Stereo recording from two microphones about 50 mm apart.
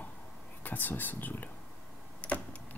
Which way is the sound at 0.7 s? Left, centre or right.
Left.